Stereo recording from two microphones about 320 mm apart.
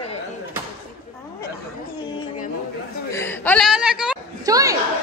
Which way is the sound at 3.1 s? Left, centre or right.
Centre.